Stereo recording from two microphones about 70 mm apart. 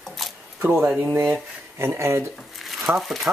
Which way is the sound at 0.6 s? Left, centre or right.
Right.